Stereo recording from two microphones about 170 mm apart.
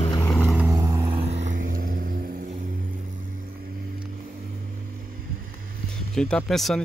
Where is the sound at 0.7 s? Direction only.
20° right (ahead or behind).